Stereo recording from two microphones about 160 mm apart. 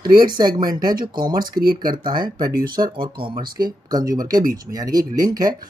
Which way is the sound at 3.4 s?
65° right (ahead or behind).